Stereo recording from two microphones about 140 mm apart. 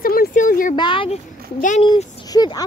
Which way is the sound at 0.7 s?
35° left (ahead or behind).